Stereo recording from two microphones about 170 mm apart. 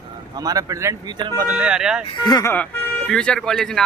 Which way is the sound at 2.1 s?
25° left (ahead or behind).